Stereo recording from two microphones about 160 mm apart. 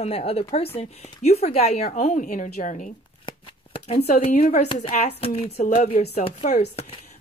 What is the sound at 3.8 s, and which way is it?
Speech, 40° left (ahead or behind).